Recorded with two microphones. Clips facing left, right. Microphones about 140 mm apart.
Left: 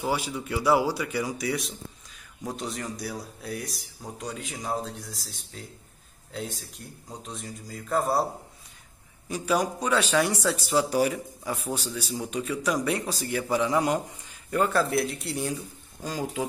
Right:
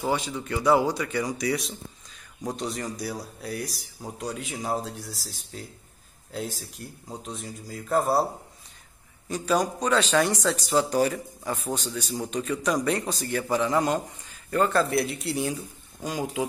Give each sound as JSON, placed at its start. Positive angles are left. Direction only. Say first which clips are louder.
{"t": 0.1, "sound": "a man's voice", "louder": "right 1 dB", "side_deg": 5}
{"t": 9.3, "sound": "a man's voice", "louder": "right 1 dB", "side_deg": 10}
{"t": 16.0, "sound": "speech", "louder": "right 2 dB", "side_deg": -15}